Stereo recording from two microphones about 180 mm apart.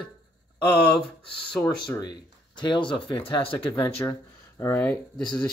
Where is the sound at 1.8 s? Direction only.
25° left (ahead or behind).